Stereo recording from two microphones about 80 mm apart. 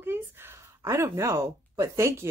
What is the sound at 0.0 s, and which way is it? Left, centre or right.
Speech, right.